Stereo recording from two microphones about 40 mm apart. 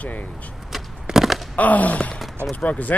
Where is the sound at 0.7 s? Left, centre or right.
Centre.